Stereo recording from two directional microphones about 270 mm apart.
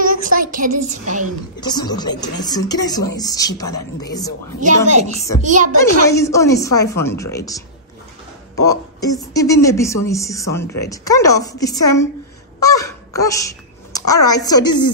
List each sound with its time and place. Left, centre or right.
0.3 s a woman's voice: right
1.6 s speech: centre
4.6 s a woman's voice: right
6.0 s speech: centre